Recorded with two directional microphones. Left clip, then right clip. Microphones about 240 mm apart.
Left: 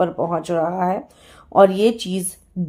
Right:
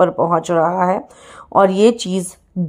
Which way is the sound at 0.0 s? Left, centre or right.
Centre.